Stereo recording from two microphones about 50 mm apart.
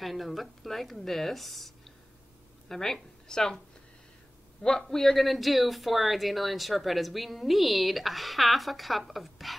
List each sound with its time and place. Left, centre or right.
0.0 s a woman's voice: centre
4.6 s speech: centre